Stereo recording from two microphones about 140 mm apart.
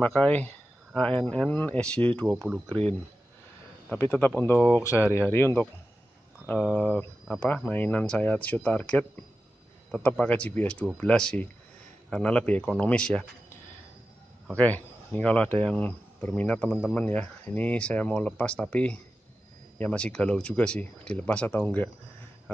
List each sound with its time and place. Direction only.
0.0 s speech: 10° left (ahead or behind)
2.7 s speech: 45° right (ahead or behind)
4.0 s speech: 15° left (ahead or behind)
4.6 s speech: 5° right (ahead or behind)
4.8 s speech: 20° left (ahead or behind)
14.6 s speech: 10° left (ahead or behind)